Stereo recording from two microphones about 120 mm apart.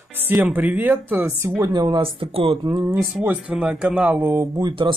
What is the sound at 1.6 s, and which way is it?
Speech, 35° right (ahead or behind).